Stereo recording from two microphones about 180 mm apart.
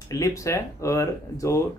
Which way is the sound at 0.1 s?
15° left (ahead or behind).